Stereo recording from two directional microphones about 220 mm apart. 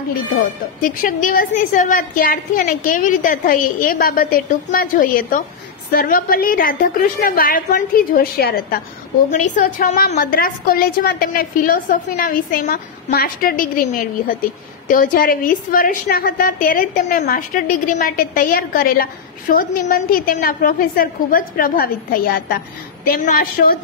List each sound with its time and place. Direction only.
0.3 s a woman's voice: 40° left (ahead or behind)